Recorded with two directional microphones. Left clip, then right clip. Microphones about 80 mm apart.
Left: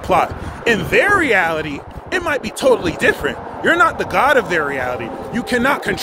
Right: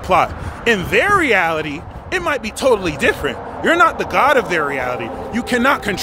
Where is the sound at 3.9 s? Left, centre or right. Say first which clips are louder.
Even; right.